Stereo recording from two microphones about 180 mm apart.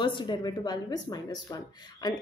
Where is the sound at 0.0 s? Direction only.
25° left (ahead or behind).